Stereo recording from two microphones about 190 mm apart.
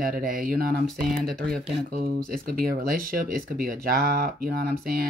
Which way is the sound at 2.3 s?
50° right (ahead or behind).